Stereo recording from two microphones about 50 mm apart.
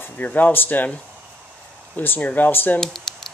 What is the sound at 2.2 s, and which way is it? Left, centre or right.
Speech, left.